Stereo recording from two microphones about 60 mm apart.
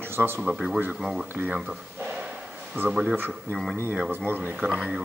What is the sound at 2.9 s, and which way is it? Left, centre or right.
Speech, centre.